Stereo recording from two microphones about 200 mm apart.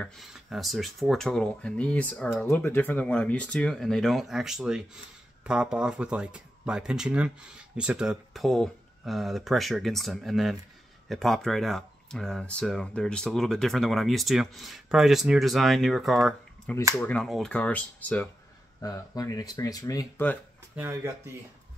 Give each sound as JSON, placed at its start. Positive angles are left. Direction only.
{"t": 0.0, "sound": "speech", "side_deg": 0}
{"t": 18.8, "sound": "speech", "side_deg": 20}
{"t": 20.7, "sound": "speech", "side_deg": -10}